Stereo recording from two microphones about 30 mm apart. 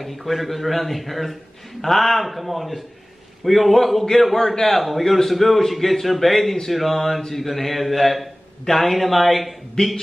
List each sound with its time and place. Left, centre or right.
0.0 s a man's voice: centre
9.8 s speech: left